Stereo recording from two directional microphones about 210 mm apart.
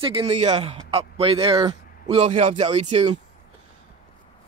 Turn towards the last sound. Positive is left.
turn(degrees=-30)  # may be behind; listen again after turning